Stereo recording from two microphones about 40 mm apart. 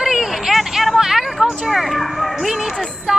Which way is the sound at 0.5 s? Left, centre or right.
Centre.